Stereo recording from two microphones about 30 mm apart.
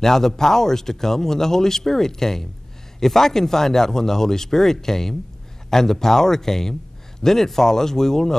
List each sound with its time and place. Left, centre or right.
0.0 s speech: centre